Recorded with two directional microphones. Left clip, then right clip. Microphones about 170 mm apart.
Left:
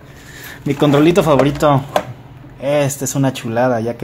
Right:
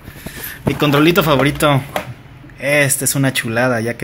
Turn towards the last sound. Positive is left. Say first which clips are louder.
# left 1 dB
turn(degrees=0)  # may be behind; listen again after turning